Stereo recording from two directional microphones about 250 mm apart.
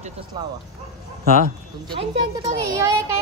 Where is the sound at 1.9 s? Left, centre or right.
Right.